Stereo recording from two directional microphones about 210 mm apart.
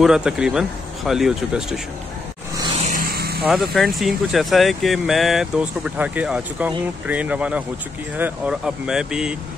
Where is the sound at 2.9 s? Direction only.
45° right (ahead or behind).